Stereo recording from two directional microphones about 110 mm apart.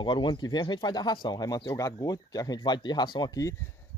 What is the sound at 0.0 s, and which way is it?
Speech, 45° left (ahead or behind).